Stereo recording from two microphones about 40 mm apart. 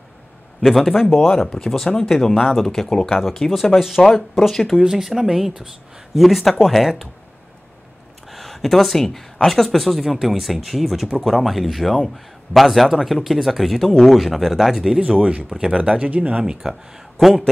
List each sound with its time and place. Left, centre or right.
0.6 s speech: centre
2.3 s speech: centre
2.6 s speech: centre
4.6 s speech: centre
8.3 s speech: centre
15.0 s speech: right
16.5 s speech: centre